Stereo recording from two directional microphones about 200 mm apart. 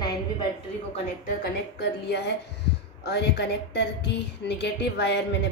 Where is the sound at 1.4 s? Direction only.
55° left (ahead or behind).